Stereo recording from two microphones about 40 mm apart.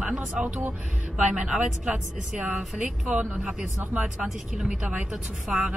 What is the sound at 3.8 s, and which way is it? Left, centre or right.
Speech, right.